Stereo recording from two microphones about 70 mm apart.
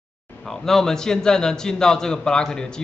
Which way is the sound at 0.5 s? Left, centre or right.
Centre.